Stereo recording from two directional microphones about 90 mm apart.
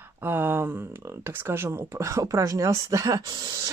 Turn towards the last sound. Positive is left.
turn(degrees=-45)  # may be behind; listen again after turning